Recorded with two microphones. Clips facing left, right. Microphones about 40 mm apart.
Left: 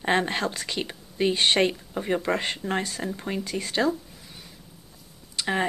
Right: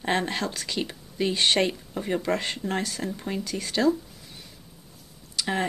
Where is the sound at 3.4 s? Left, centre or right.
Left.